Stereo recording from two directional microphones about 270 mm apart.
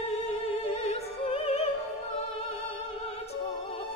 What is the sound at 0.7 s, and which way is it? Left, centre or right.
Opera, left.